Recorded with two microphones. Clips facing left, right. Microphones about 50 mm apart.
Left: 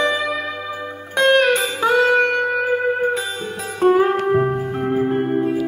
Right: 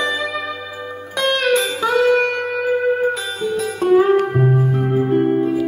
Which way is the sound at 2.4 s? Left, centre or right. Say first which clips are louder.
Even; centre.